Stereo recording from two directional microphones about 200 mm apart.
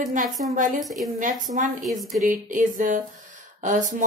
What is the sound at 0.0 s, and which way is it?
Speech, 40° right (ahead or behind).